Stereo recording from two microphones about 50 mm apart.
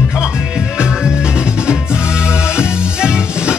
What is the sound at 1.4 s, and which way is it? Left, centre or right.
Music, centre.